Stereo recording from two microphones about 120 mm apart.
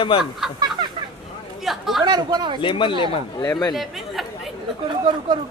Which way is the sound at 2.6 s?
45° left (ahead or behind).